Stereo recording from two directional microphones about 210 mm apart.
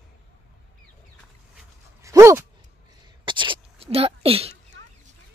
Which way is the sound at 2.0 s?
15° right (ahead or behind).